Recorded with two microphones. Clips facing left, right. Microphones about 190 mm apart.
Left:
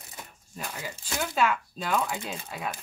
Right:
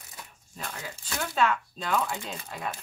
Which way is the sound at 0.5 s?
10° left (ahead or behind).